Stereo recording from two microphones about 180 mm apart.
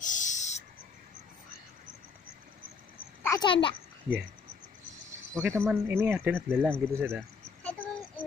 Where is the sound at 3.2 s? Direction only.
20° left (ahead or behind).